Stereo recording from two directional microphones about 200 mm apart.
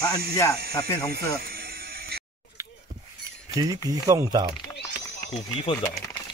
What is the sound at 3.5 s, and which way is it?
Speech, 20° right (ahead or behind).